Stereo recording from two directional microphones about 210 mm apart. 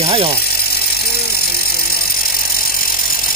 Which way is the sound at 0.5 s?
45° left (ahead or behind).